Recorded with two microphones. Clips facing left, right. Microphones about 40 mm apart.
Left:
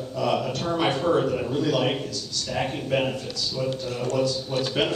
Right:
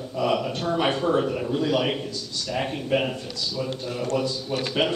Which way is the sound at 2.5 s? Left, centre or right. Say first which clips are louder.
Even; centre.